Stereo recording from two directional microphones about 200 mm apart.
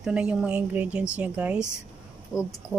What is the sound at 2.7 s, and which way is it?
Speech, 15° left (ahead or behind).